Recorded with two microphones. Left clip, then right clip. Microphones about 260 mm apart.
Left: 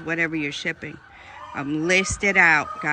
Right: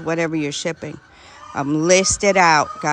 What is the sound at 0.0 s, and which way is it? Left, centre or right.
Speech, centre.